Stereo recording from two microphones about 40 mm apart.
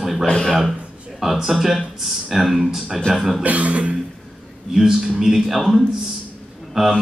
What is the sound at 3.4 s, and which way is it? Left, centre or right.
Cough, right.